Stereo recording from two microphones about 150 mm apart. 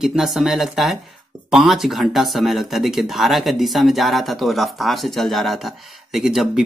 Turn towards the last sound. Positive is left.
turn(degrees=-5)  # may be behind; listen again after turning